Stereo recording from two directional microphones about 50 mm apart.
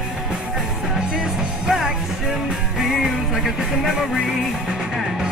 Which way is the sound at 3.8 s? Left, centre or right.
Centre.